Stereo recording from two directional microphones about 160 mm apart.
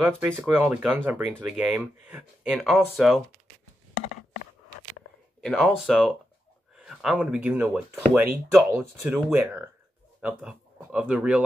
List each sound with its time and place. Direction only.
0.5 s speech: 10° right (ahead or behind)
5.4 s speech: centre (ahead or behind)